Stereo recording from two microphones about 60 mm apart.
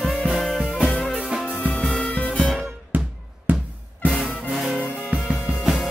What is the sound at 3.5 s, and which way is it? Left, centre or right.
Music, right.